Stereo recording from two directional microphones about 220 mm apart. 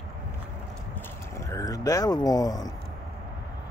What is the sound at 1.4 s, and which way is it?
Speech, 15° left (ahead or behind).